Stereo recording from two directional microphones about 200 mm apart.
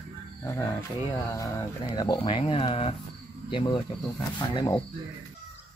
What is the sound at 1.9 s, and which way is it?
Speech, 20° left (ahead or behind).